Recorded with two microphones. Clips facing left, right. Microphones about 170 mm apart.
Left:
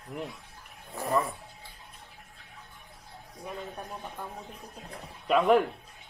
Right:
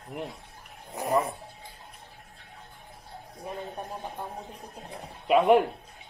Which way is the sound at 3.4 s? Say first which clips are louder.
Right 2 dB; 25° right (ahead or behind).